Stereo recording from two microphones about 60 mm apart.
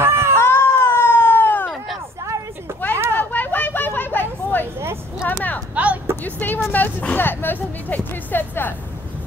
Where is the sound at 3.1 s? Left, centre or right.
Left.